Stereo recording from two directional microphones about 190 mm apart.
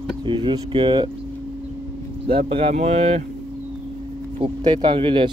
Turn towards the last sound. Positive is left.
turn(degrees=-25)  # may be behind; listen again after turning